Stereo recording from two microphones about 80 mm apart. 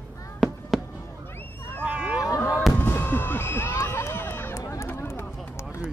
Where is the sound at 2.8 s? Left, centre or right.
Left.